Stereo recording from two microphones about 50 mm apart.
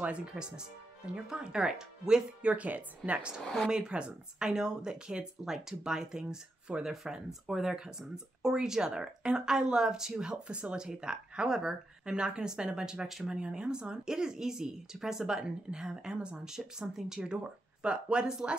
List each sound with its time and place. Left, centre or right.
0.0 s speech: right
2.5 s speech: right
3.4 s speech: centre
3.7 s speech: centre